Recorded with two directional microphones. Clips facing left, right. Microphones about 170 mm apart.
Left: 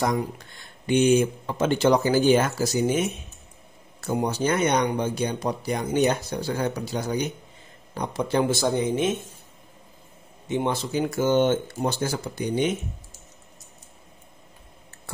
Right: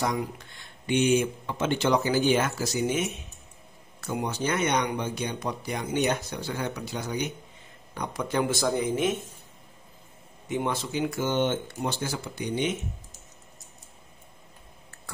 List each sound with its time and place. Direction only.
0.8 s speech: 40° left (ahead or behind)
4.1 s speech: 35° left (ahead or behind)
10.5 s speech: 30° left (ahead or behind)